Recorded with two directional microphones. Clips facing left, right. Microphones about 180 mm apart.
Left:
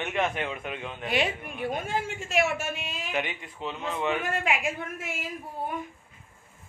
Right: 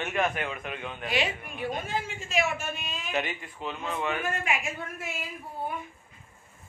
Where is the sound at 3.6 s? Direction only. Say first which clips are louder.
Left 2 dB; 5° left (ahead or behind).